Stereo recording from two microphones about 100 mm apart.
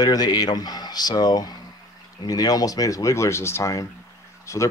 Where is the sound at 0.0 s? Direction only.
40° left (ahead or behind).